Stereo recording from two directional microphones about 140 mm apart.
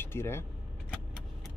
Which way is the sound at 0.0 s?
15° left (ahead or behind).